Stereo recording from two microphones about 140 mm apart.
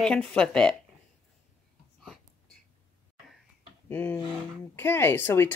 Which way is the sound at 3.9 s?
15° left (ahead or behind).